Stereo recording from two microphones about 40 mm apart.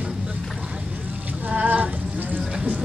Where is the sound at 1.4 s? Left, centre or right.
Right.